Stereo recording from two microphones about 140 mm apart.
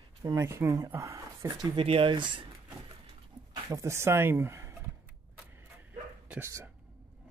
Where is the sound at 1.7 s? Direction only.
40° right (ahead or behind).